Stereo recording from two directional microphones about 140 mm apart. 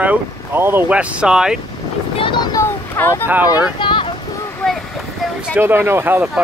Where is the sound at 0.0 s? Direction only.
15° right (ahead or behind).